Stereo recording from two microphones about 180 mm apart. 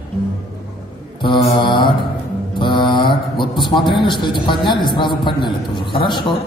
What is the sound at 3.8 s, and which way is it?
A man's voice, 25° left (ahead or behind).